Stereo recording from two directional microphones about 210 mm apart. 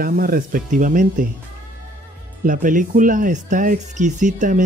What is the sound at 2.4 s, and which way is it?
Speech, 40° right (ahead or behind).